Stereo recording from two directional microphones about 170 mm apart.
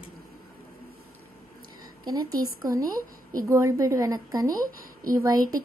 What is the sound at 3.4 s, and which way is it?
A woman's voice, 20° right (ahead or behind).